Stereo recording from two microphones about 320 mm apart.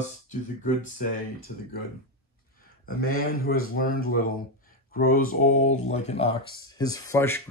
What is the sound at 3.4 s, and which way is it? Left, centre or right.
Speech, left.